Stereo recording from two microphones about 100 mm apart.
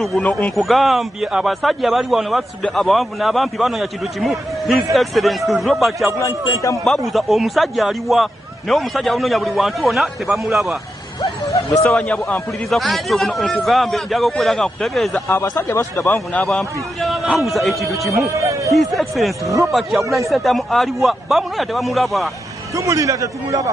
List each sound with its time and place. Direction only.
0.2 s speech: 15° left (ahead or behind)
0.6 s a man's voice: centre (ahead or behind)
6.1 s a man's voice: 30° left (ahead or behind)
7.1 s a man's voice: centre (ahead or behind)
11.9 s speech: 15° left (ahead or behind)
12.6 s a man's voice: centre (ahead or behind)
15.2 s a man's voice: 25° left (ahead or behind)
16.4 s a man's voice: centre (ahead or behind)
18.0 s speech: 30° right (ahead or behind)
18.7 s a man's voice: centre (ahead or behind)
22.8 s a man's voice: 35° right (ahead or behind)